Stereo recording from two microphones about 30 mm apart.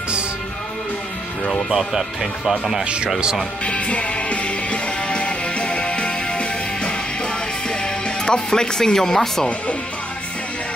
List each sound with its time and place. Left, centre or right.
2.8 s speech: right
3.6 s music: left
7.8 s music: left
8.9 s speech: centre